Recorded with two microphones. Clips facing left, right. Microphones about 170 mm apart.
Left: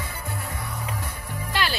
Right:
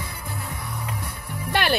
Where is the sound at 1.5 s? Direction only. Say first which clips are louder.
Right 5 dB; 60° right (ahead or behind).